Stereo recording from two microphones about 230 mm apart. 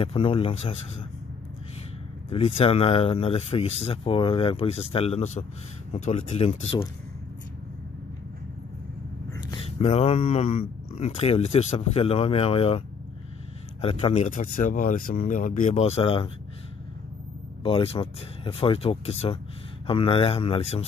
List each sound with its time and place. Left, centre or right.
0.0 s speech: left
2.2 s speech: left
9.3 s speech: left
17.6 s speech: left